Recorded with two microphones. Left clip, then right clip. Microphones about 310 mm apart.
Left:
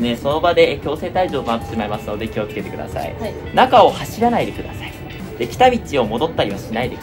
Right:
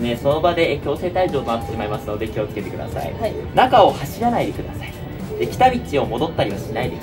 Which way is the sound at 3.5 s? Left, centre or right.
Left.